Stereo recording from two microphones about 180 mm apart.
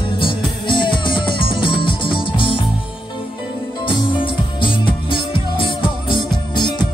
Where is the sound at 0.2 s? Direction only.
25° left (ahead or behind).